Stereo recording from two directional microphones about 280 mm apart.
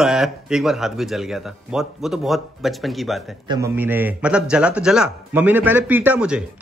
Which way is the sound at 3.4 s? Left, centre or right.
Centre.